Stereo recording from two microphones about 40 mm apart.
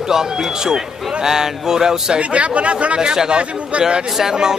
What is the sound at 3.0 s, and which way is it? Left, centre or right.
Speech, centre.